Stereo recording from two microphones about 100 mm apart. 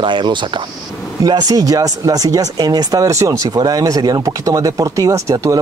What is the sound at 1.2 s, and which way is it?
Speech, 40° right (ahead or behind).